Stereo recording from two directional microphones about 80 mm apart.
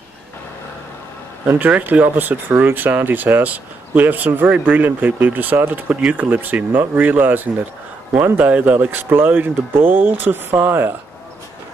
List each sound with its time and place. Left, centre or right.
1.7 s speech: right